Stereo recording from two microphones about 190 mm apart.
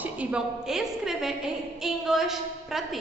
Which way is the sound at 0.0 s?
5° right (ahead or behind).